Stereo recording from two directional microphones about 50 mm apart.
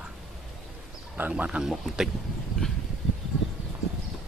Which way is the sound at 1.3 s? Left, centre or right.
Right.